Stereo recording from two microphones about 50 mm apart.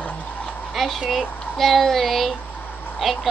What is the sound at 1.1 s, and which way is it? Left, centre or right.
Speech, centre.